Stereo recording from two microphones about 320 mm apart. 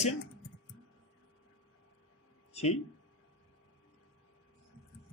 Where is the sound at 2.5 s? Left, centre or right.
Centre.